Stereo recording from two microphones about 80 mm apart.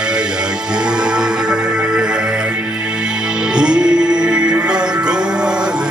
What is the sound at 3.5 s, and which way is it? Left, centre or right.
Music, centre.